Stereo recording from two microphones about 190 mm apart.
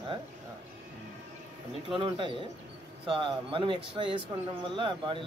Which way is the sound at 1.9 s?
25° right (ahead or behind).